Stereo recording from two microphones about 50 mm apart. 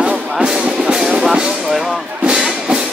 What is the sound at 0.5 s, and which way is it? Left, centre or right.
Music, centre.